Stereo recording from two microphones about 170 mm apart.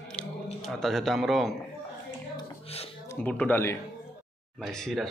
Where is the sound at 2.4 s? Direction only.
35° left (ahead or behind).